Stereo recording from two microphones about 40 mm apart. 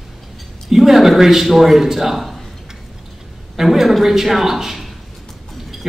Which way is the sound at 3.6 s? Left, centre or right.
Centre.